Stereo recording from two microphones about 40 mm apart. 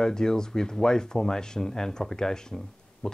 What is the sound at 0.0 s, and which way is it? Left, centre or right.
Speech, centre.